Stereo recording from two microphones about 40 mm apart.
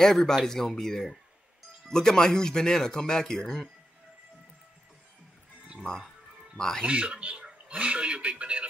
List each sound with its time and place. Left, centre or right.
0.0 s speech: centre
5.8 s speech: centre
6.8 s a man's voice: right